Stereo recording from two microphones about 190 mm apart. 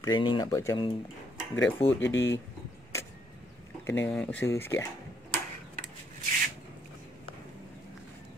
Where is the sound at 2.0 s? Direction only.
75° left (ahead or behind).